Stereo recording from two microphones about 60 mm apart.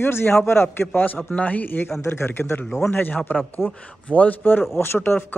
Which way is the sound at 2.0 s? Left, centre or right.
Left.